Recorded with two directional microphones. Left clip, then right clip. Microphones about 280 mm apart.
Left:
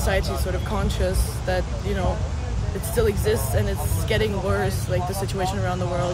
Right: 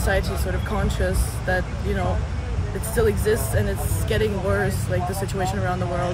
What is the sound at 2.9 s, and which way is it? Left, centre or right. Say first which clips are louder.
Speech: right 1 dB; centre.